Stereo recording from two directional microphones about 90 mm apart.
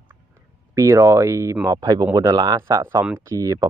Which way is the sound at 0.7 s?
35° right (ahead or behind).